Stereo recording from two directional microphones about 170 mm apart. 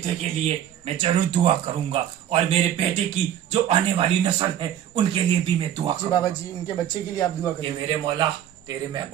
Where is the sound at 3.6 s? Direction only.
30° right (ahead or behind).